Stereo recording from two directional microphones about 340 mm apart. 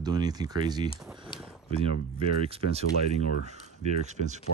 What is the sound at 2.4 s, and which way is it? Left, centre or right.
Speech, centre.